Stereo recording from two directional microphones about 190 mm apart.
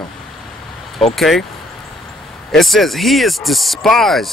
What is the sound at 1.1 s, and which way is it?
Speech, centre (ahead or behind).